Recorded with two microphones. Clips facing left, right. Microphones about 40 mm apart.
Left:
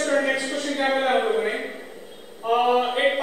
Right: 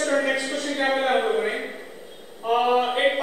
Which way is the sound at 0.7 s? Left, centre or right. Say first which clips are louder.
Even; centre.